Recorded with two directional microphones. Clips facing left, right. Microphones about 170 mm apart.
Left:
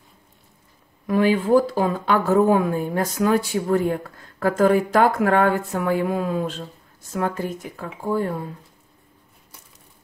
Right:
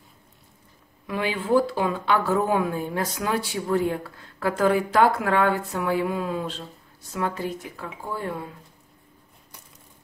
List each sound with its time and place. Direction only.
1.0 s a woman's voice: 45° left (ahead or behind)